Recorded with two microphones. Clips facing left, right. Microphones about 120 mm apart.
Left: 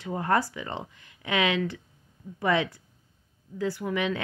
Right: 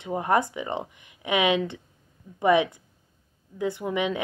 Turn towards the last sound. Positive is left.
turn(degrees=-20)  # may be behind; listen again after turning